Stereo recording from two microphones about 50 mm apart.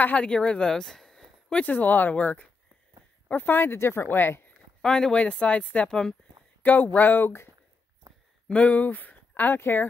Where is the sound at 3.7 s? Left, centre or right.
Left.